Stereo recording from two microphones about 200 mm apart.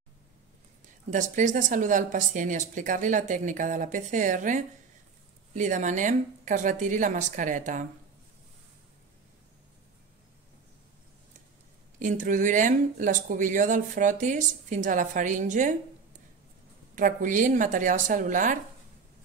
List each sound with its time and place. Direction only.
1.1 s speech: 40° right (ahead or behind)
12.0 s speech: 40° right (ahead or behind)
16.9 s speech: 40° right (ahead or behind)